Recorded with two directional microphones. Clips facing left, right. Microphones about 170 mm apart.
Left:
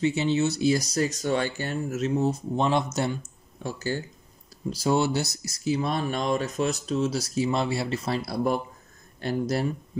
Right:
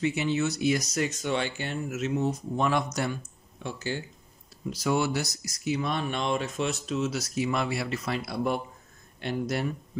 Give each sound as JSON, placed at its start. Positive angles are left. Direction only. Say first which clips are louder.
{"t": 0.0, "sound": "speech", "louder": "left 3 dB", "side_deg": 30}
{"t": 3.6, "sound": "speech", "louder": "left 3 dB", "side_deg": 40}